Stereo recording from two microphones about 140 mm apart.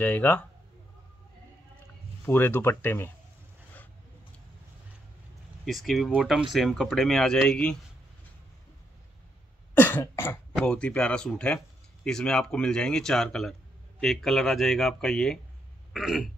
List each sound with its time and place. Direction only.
0.0 s speech: 10° left (ahead or behind)
2.2 s speech: 15° left (ahead or behind)
5.7 s speech: centre (ahead or behind)
9.8 s cough: 15° left (ahead or behind)
10.6 s speech: 10° left (ahead or behind)
15.9 s throat clearing: 5° right (ahead or behind)